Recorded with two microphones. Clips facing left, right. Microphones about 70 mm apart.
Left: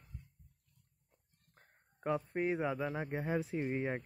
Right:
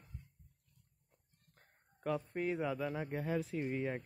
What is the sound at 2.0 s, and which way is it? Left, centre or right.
A man's voice, left.